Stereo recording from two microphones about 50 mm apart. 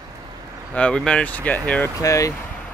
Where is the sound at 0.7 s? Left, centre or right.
Centre.